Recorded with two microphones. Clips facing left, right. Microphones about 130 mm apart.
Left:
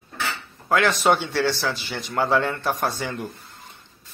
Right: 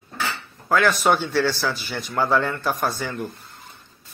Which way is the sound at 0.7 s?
25° left (ahead or behind).